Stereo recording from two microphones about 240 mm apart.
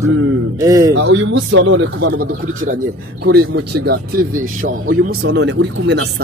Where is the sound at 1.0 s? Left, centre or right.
Right.